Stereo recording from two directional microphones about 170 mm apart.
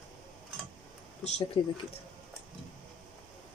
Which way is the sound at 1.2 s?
40° left (ahead or behind).